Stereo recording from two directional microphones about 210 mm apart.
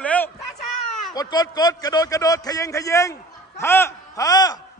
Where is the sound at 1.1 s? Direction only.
20° left (ahead or behind).